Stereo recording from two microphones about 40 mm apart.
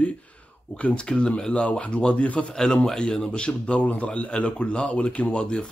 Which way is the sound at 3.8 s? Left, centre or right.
Left.